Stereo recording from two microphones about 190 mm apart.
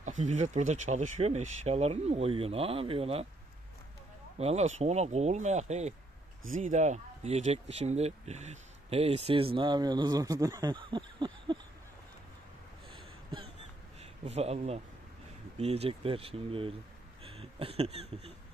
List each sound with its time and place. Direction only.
0.0 s speech: 40° right (ahead or behind)
4.4 s speech: 35° right (ahead or behind)
12.9 s a sound: 25° right (ahead or behind)
14.2 s speech: 35° right (ahead or behind)